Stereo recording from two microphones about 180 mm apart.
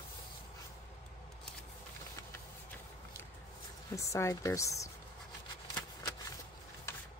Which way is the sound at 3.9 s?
15° left (ahead or behind).